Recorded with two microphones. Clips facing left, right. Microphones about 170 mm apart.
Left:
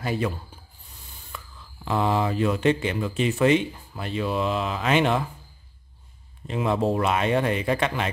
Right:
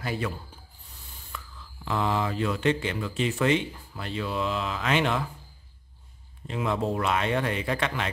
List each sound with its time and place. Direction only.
1.3 s a sound: 15° left (ahead or behind)
1.9 s speech: 15° left (ahead or behind)
6.4 s speech: 25° left (ahead or behind)
7.1 s speech: 15° left (ahead or behind)